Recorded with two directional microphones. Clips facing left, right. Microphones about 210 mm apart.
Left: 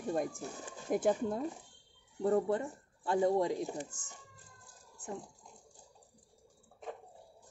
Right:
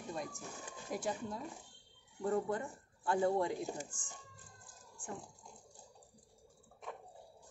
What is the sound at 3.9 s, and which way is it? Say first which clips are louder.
Speech: even; 40° left (ahead or behind).